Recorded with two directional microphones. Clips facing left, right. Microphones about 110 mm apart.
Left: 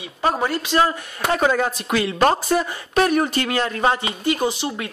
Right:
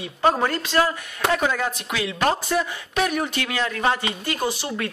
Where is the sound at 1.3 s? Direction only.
40° left (ahead or behind).